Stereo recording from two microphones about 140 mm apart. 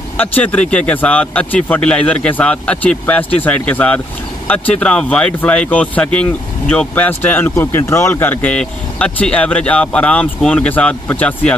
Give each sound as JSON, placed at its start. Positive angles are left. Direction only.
{"t": 0.2, "sound": "speech", "side_deg": 10}